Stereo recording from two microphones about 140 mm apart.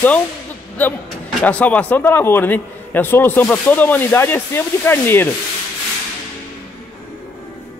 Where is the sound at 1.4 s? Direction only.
10° left (ahead or behind).